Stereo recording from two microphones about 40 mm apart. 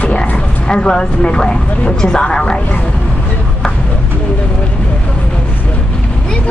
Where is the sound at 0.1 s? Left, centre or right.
Left.